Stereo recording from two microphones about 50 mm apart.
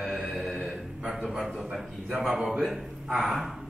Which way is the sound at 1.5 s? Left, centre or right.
Centre.